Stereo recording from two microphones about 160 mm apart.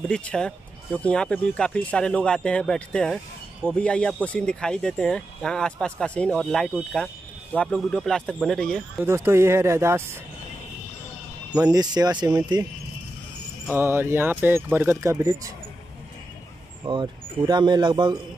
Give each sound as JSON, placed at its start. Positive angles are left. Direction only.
{"t": 0.1, "sound": "speech", "side_deg": 5}
{"t": 9.0, "sound": "speech", "side_deg": -15}
{"t": 11.5, "sound": "a man's voice", "side_deg": -25}
{"t": 13.7, "sound": "speech", "side_deg": -15}
{"t": 16.8, "sound": "a man's voice", "side_deg": -25}